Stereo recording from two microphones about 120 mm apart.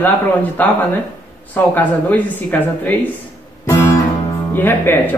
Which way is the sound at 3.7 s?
25° left (ahead or behind).